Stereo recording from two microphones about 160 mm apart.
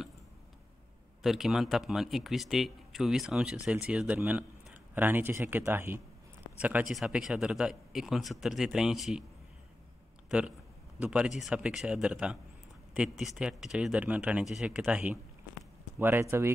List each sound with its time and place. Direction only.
1.2 s speech: centre (ahead or behind)
10.3 s speech: 5° right (ahead or behind)